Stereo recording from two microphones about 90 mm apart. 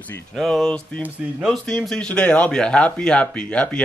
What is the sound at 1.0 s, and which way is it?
Speech, 20° right (ahead or behind).